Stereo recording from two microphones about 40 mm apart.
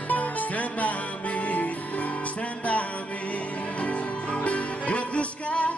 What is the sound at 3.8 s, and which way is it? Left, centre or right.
Music, left.